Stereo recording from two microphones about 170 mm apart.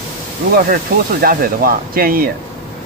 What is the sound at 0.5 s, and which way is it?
Speech, 60° right (ahead or behind).